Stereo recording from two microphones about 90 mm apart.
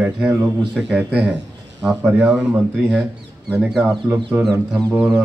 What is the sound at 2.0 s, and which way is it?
Speech, 25° right (ahead or behind).